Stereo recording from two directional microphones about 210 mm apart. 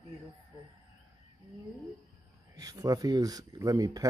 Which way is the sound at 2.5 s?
15° right (ahead or behind).